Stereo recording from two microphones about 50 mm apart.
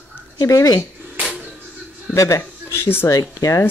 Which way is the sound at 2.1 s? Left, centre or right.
Left.